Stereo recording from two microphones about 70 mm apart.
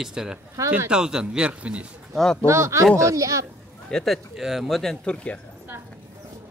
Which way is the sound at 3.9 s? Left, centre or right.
Centre.